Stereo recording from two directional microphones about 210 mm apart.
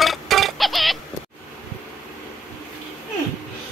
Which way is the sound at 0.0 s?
Centre (ahead or behind).